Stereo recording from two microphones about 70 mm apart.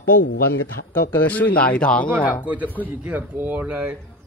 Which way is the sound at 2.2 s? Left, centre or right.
Right.